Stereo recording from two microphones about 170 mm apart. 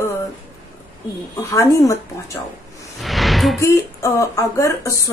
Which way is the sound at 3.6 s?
15° left (ahead or behind).